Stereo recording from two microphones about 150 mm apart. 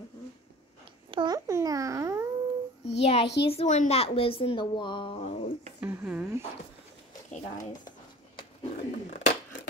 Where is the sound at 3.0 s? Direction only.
45° left (ahead or behind).